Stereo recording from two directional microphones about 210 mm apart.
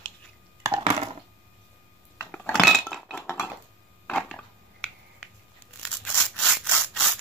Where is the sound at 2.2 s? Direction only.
5° left (ahead or behind).